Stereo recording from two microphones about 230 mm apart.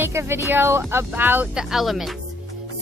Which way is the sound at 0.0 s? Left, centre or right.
Centre.